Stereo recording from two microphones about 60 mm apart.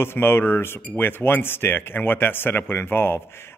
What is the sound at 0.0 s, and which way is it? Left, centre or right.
Speech, left.